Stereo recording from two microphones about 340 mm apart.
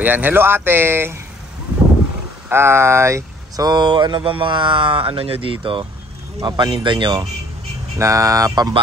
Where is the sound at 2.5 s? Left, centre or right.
Centre.